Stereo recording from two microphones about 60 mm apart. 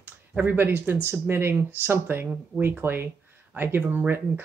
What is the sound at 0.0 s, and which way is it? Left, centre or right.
Speech, right.